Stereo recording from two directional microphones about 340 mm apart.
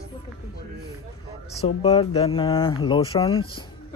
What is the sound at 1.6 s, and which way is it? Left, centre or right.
Speech, centre.